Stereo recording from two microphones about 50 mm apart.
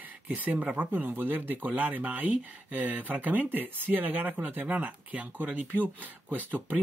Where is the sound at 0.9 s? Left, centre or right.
Right.